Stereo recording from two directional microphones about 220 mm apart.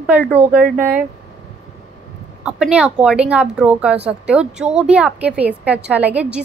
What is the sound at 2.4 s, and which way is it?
A woman's voice, 5° right (ahead or behind).